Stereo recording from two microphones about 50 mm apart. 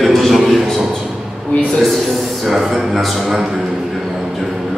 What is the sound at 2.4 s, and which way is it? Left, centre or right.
Speech, centre.